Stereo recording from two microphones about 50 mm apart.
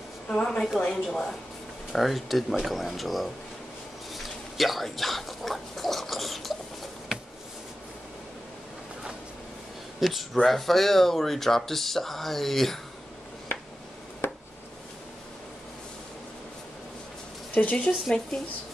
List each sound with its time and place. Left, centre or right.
0.3 s speech: centre
1.9 s speech: centre
4.1 s rodents: centre
9.9 s a sound: centre
10.4 s speech: centre
14.2 s a sound: left
17.6 s speech: left